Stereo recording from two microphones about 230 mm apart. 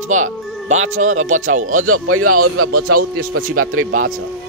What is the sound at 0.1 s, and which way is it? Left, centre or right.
Speech, right.